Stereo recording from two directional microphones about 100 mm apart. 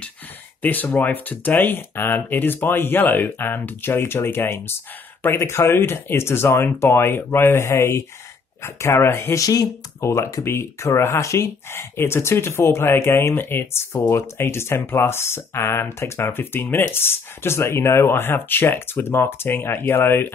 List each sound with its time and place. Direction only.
0.6 s speech: 20° left (ahead or behind)